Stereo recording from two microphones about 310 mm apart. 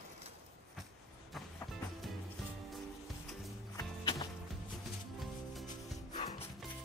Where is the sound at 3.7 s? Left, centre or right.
Centre.